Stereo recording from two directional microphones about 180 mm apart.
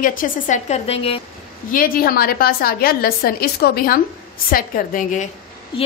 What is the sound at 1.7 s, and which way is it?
A woman's voice, 55° left (ahead or behind).